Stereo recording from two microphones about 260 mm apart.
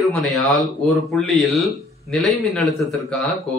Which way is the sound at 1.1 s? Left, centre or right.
Centre.